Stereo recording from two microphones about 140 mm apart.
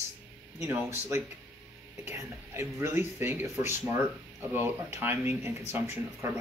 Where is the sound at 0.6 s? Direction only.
15° right (ahead or behind).